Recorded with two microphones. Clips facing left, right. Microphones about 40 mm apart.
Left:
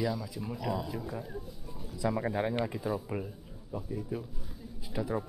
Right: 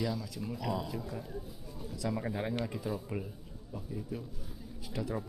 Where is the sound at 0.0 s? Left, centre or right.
Centre.